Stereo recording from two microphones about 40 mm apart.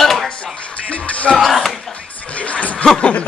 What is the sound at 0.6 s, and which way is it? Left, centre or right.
Music, left.